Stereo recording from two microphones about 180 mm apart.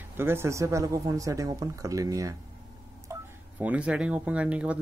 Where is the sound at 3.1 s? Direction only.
15° right (ahead or behind).